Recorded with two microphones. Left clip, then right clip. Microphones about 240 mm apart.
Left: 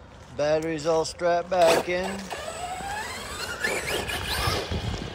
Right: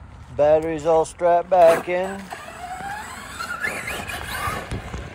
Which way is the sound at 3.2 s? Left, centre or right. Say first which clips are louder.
Right 2 dB; left.